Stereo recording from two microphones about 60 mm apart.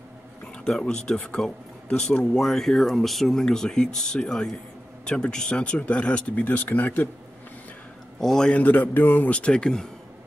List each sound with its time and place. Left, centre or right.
0.7 s speech: centre
1.1 s speech: left
1.9 s speech: centre; by 7.1 s left
8.2 s speech: centre
8.5 s a man's voice: left
9.3 s speech: centre